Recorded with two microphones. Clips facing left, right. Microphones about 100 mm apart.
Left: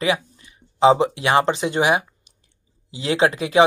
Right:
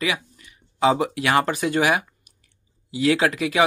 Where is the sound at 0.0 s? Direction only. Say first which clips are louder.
Left 5 dB; 30° left (ahead or behind).